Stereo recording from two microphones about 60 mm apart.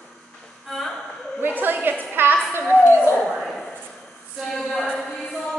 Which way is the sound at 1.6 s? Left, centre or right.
Right.